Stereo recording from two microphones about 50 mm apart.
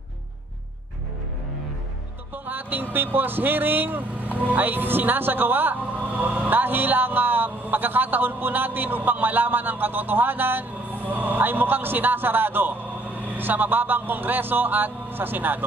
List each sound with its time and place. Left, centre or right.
2.3 s a man's voice: right